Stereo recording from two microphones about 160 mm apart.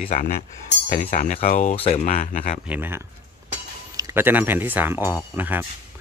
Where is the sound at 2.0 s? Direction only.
55° left (ahead or behind).